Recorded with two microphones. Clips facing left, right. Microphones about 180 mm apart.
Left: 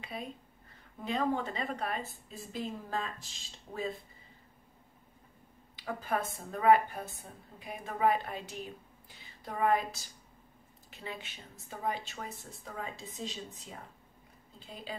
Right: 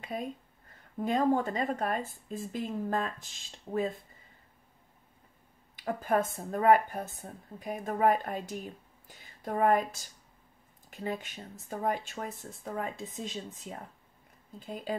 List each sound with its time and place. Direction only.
0.0 s speech: 45° right (ahead or behind)
5.8 s a woman's voice: 50° right (ahead or behind)